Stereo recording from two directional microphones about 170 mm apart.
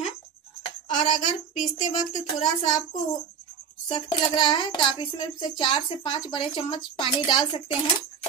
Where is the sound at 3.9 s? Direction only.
25° left (ahead or behind).